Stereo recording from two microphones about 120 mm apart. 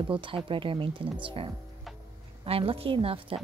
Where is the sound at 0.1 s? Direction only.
45° right (ahead or behind).